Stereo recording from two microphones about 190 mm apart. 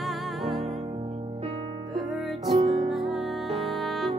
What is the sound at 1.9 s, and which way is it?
Music, centre (ahead or behind).